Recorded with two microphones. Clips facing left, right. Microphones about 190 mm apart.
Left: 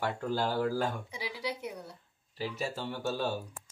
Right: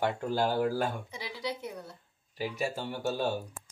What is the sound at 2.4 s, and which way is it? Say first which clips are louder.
Speech: right 2 dB; 15° right (ahead or behind).